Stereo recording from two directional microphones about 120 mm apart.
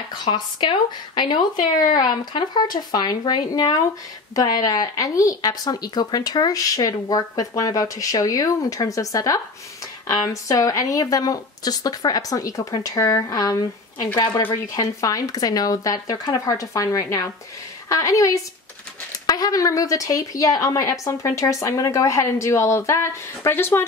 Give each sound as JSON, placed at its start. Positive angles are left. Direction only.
{"t": 0.2, "sound": "a woman's voice", "side_deg": 45}